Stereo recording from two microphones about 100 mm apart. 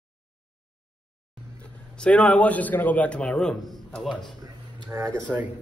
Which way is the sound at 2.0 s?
10° left (ahead or behind).